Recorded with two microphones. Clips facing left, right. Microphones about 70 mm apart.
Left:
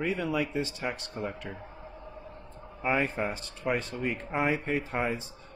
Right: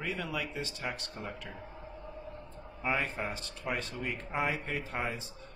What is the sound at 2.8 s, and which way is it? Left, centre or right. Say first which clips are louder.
Speech: left 5 dB; left.